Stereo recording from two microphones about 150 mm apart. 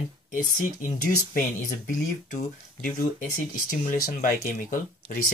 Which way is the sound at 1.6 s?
65° left (ahead or behind).